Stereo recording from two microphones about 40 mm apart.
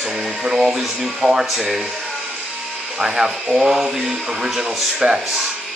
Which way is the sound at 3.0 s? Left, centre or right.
Right.